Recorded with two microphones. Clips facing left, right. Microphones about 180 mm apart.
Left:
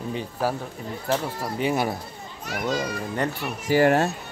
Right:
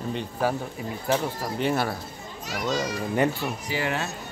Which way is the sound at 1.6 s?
10° left (ahead or behind).